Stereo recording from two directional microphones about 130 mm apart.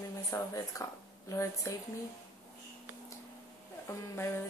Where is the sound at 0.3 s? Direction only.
25° left (ahead or behind).